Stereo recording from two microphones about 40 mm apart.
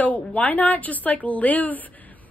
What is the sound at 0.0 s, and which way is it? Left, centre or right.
A woman's voice, left.